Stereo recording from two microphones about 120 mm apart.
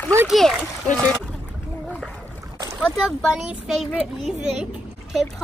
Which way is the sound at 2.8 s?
5° left (ahead or behind).